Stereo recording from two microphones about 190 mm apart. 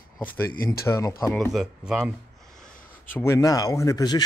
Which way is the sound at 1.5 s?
5° right (ahead or behind).